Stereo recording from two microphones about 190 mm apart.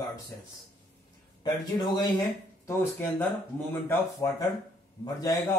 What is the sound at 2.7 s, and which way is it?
A man's voice, 10° left (ahead or behind).